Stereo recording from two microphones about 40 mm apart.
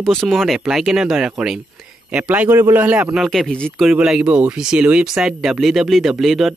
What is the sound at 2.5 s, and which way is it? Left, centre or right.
Speech, right.